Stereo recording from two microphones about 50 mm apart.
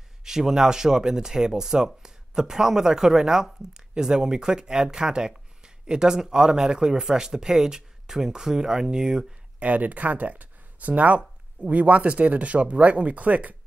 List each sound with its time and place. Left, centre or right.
0.2 s speech: centre
9.6 s speech: right